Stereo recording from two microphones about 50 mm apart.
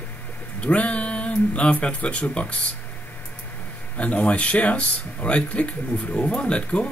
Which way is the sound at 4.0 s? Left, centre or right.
Left.